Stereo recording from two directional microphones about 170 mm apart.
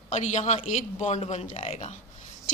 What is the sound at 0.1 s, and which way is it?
A man's voice, 40° left (ahead or behind).